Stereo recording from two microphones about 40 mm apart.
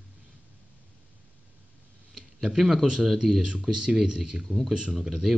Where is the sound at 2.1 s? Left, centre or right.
Centre.